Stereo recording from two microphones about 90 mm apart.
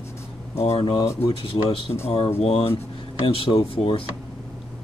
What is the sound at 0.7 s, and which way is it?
Speech, 90° left.